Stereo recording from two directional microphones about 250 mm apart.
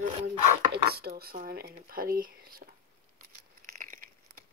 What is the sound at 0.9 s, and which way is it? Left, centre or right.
Speech, right.